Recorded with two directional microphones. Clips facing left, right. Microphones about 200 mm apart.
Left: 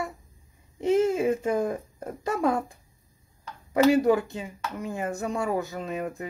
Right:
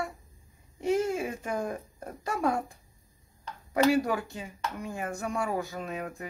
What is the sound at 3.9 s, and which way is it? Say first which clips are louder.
Speech: left 6 dB; 25° left (ahead or behind).